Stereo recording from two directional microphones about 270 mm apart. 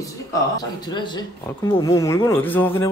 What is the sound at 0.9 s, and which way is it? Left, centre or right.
A man's voice, centre.